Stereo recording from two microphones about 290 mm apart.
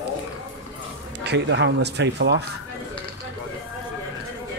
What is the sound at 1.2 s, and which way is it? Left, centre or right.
Speech, right.